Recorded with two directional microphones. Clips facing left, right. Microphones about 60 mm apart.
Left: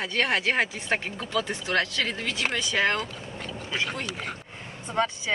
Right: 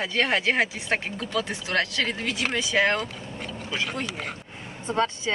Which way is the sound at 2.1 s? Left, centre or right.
Centre.